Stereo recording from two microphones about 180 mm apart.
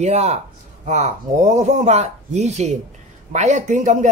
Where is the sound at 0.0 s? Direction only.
40° right (ahead or behind).